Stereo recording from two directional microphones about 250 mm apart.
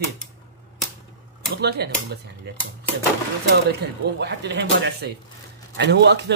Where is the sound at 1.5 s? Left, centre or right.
Right.